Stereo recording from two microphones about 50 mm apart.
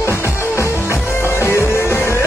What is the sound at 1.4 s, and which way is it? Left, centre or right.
Music, left.